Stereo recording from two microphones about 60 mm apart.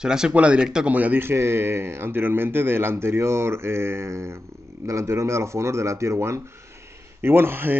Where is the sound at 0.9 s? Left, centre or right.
Right.